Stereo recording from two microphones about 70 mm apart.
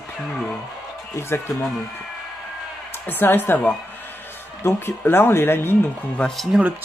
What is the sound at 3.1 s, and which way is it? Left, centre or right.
A woman's voice, left.